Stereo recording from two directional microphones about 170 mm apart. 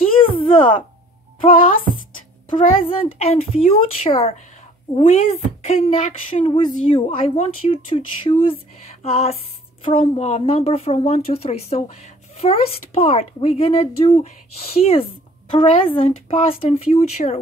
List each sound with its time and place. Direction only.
0.4 s speech: 30° left (ahead or behind)
2.5 s a woman's voice: 35° left (ahead or behind)